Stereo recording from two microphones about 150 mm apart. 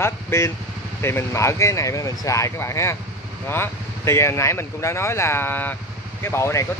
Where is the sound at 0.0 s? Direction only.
15° left (ahead or behind).